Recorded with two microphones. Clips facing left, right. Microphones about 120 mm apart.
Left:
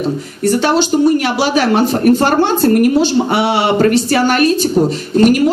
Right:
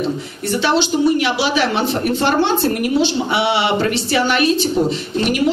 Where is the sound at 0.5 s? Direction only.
45° left (ahead or behind).